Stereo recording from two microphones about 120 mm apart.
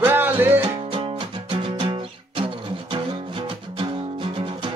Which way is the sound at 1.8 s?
45° right (ahead or behind).